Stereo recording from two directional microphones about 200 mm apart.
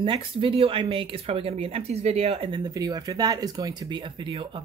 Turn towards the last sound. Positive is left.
turn(degrees=-25)  # may be behind; listen again after turning